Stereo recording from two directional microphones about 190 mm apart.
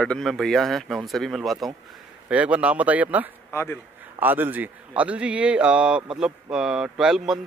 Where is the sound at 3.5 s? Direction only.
15° left (ahead or behind).